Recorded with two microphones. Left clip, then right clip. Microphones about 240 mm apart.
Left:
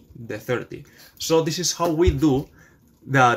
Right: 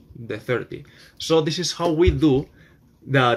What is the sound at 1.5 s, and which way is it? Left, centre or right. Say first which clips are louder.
Speech: left 1 dB; left.